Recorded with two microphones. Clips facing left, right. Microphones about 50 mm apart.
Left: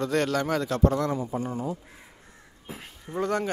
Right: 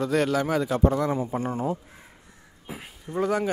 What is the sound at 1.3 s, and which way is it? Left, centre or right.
Speech, right.